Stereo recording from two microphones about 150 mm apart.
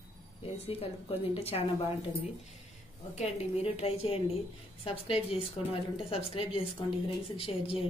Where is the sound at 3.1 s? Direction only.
45° left (ahead or behind).